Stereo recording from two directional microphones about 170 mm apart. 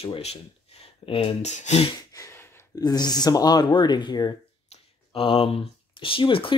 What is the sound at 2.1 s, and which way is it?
Speech, 15° left (ahead or behind).